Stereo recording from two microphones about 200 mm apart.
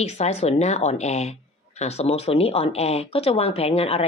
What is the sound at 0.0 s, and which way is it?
A woman's voice, 30° left (ahead or behind).